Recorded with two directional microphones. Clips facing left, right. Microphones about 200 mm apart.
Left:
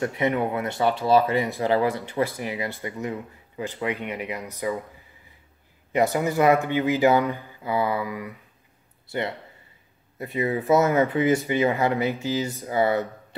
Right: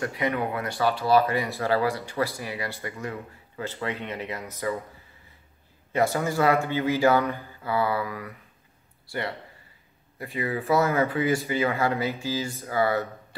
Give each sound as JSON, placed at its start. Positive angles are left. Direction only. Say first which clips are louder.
{"t": 0.0, "sound": "speech", "louder": "left 3 dB", "side_deg": 25}
{"t": 5.9, "sound": "speech", "louder": "left 2 dB", "side_deg": 15}